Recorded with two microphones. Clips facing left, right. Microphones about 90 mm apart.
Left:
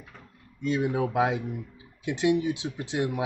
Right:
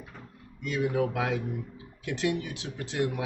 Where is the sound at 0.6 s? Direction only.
25° left (ahead or behind).